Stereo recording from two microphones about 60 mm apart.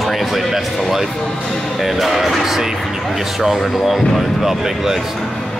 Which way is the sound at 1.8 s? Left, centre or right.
Centre.